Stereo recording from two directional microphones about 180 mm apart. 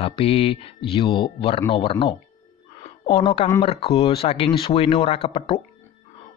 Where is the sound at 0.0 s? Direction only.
30° left (ahead or behind).